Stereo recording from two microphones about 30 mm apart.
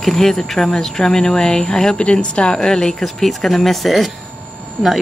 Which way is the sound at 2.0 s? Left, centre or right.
Left.